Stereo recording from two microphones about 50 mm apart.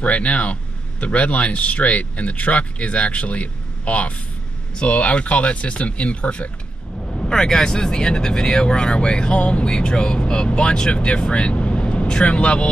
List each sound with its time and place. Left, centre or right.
0.0 s speech: left
7.1 s speech: centre